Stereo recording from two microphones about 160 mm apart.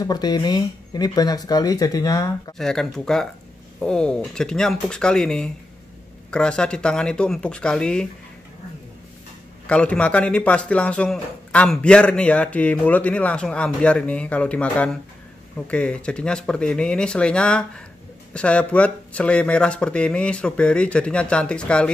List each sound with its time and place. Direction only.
0.0 s speech: 25° left (ahead or behind)
2.5 s speech: 5° left (ahead or behind)
9.7 s speech: 5° left (ahead or behind)